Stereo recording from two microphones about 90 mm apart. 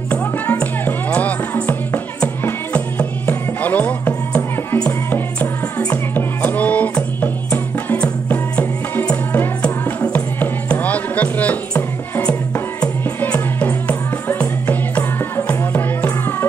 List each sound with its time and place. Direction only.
0.1 s music: 20° left (ahead or behind)